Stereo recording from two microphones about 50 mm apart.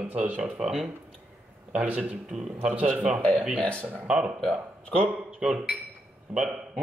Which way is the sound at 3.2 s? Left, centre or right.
Left.